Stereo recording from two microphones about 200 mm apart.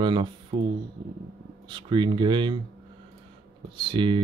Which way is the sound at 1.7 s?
25° right (ahead or behind).